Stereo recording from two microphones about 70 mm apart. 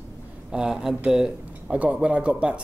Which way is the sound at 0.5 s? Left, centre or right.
Centre.